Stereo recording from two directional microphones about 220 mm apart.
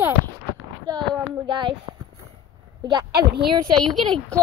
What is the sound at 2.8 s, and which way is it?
Speech, 20° right (ahead or behind).